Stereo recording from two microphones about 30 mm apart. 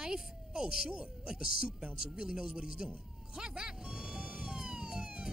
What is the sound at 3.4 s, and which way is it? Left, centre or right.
Police car, right.